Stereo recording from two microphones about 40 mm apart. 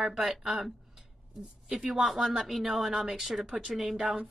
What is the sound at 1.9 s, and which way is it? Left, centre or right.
A woman's voice, centre.